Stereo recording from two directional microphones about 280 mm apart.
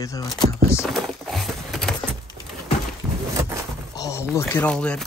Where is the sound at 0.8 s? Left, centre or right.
Centre.